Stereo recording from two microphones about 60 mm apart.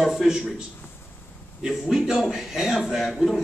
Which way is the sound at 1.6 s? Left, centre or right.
Centre.